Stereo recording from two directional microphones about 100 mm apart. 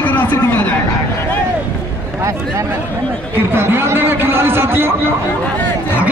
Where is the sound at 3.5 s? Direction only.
25° right (ahead or behind).